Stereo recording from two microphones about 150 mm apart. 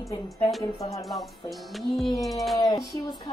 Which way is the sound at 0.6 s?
20° left (ahead or behind).